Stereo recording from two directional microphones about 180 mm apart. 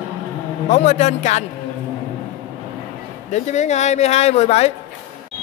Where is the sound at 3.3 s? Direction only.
40° left (ahead or behind).